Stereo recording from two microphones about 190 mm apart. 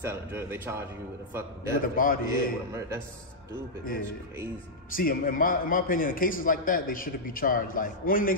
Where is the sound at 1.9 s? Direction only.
45° left (ahead or behind).